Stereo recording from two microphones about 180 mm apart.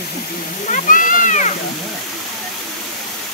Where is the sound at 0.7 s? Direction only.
45° left (ahead or behind).